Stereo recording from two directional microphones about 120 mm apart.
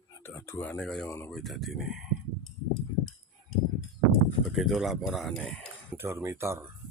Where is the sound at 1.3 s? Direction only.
Centre (ahead or behind).